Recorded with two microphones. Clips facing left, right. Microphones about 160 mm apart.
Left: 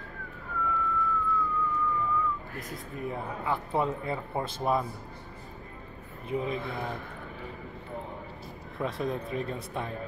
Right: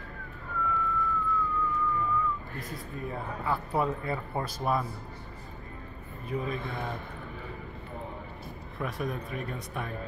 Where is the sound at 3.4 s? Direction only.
20° left (ahead or behind).